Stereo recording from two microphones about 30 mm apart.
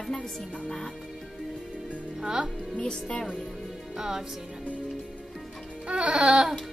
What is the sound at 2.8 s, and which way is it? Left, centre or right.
Speech, left.